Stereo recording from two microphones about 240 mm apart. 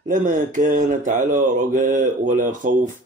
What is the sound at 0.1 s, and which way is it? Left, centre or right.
Speech, right.